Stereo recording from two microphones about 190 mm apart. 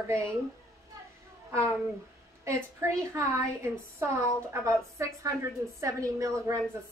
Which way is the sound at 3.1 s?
15° right (ahead or behind).